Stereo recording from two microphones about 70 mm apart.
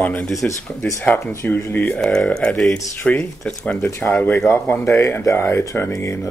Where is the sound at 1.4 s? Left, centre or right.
Left.